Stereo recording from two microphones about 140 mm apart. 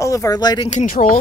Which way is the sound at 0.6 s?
65° left (ahead or behind).